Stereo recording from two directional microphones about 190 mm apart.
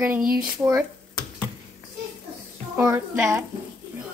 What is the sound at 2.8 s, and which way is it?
Speech, 10° right (ahead or behind).